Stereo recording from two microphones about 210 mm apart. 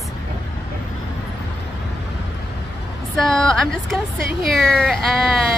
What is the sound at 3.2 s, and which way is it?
Speech, 5° left (ahead or behind).